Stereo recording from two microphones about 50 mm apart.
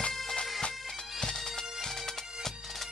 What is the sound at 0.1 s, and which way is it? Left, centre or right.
Bagpipes, centre.